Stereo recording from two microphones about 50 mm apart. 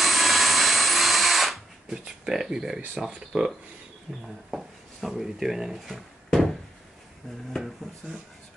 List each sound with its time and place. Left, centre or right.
0.0 s drill: centre
2.5 s speech: centre